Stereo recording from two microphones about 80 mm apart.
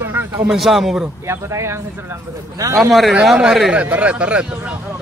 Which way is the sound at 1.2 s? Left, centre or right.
Right.